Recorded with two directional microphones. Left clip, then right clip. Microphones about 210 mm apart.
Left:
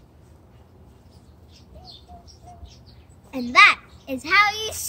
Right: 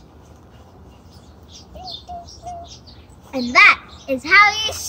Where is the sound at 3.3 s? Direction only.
40° left (ahead or behind).